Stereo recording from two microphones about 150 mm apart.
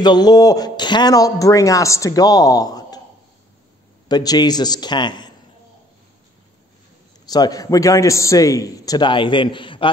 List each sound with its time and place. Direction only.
0.0 s a man's voice: 25° left (ahead or behind)
4.1 s a man's voice: 25° left (ahead or behind)
7.2 s a man's voice: 25° left (ahead or behind)